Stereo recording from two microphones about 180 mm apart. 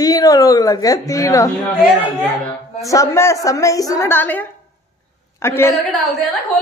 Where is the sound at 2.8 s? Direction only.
15° left (ahead or behind).